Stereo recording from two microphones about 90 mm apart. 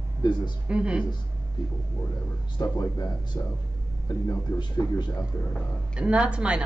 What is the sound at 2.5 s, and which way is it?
Speech, 45° left (ahead or behind).